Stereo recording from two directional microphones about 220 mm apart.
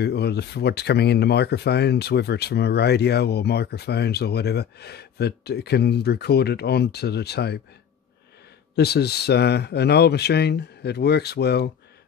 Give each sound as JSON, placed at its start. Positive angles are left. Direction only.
{"t": 0.0, "sound": "speech", "side_deg": 50}
{"t": 8.7, "sound": "speech", "side_deg": 45}